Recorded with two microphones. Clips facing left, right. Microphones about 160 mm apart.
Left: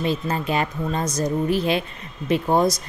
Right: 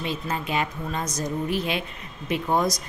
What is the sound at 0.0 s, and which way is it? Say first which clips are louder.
Speech: left 5 dB; 35° left (ahead or behind).